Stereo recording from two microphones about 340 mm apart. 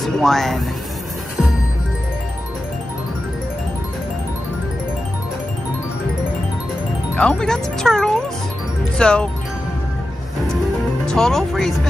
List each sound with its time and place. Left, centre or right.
0.0 s speech: centre
7.2 s speech: centre
11.1 s speech: centre